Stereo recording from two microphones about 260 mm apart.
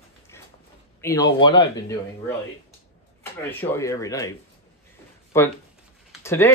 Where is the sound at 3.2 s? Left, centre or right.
Centre.